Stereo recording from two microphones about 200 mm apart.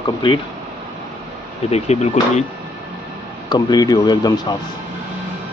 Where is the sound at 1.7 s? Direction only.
35° left (ahead or behind).